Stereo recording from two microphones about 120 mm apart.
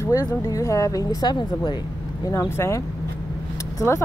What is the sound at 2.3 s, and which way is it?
Speech, 25° left (ahead or behind).